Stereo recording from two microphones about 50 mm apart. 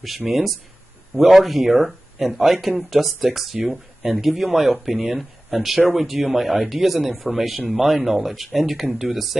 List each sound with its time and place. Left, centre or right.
0.3 s speech: centre